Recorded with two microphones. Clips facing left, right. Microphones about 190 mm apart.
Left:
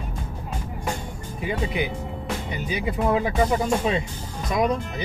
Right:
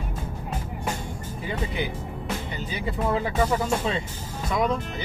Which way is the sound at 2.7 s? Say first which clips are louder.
Left 4 dB; 15° left (ahead or behind).